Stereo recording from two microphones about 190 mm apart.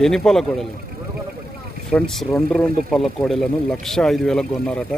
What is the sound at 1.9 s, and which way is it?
A man's voice, centre (ahead or behind).